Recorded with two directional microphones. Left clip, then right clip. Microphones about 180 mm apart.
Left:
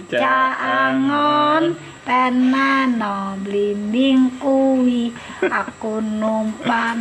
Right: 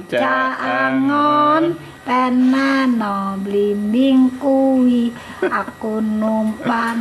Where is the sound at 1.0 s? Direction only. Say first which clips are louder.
Right 2 dB; 15° right (ahead or behind).